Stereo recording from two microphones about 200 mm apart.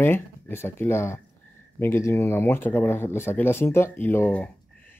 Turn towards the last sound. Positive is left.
turn(degrees=10)  # may be behind; listen again after turning